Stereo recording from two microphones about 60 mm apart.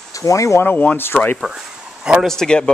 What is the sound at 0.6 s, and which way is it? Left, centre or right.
Speech, left.